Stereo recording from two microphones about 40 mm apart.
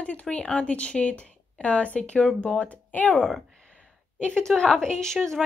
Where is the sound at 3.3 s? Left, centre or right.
Centre.